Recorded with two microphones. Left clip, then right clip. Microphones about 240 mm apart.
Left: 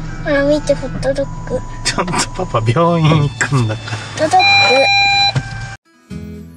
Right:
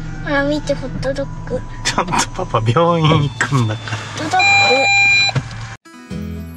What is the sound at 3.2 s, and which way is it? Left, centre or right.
Vehicle, centre.